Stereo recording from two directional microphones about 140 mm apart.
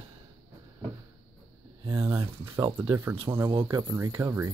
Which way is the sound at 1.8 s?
25° right (ahead or behind).